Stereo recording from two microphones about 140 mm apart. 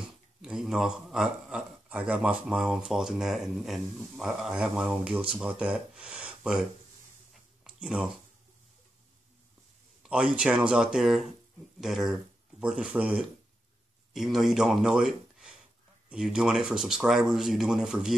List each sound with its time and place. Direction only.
0.4 s a man's voice: 5° right (ahead or behind)
7.6 s a sound: 5° right (ahead or behind)
10.0 s a man's voice: 10° right (ahead or behind)